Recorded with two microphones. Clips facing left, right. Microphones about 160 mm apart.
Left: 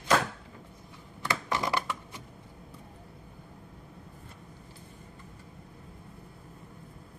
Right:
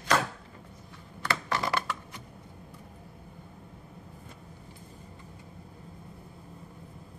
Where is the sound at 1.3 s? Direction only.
15° left (ahead or behind).